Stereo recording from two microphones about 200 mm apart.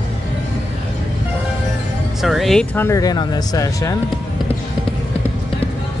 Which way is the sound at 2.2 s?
Centre (ahead or behind).